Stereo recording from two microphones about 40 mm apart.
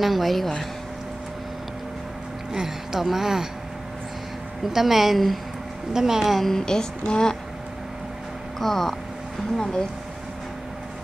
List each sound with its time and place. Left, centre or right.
0.0 s a woman's voice: centre
2.5 s a woman's voice: centre
4.7 s a woman's voice: centre
5.9 s a woman's voice: centre
6.4 s a woman's voice: centre
8.5 s a woman's voice: centre